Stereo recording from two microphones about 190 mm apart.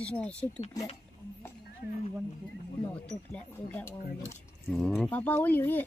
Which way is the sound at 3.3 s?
10° left (ahead or behind).